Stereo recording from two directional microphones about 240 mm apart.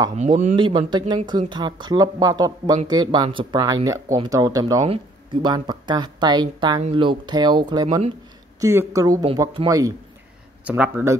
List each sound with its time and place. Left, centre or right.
0.1 s speech: right
0.6 s speech: centre